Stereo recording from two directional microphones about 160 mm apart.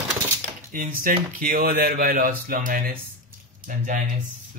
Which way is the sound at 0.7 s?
60° right (ahead or behind).